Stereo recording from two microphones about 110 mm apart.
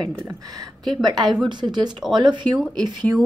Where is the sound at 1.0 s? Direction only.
40° right (ahead or behind).